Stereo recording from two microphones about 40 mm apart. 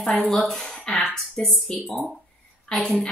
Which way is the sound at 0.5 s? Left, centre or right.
Centre.